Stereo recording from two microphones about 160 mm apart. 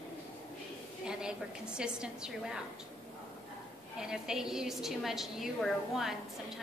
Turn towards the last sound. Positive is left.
turn(degrees=0)  # may be behind; listen again after turning